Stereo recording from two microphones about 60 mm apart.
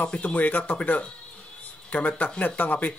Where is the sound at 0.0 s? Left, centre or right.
Left.